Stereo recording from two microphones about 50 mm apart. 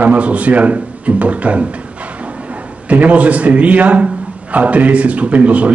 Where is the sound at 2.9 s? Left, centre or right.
Right.